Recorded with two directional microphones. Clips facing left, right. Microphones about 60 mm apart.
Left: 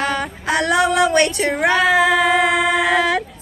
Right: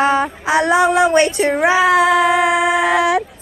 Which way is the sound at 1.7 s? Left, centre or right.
Centre.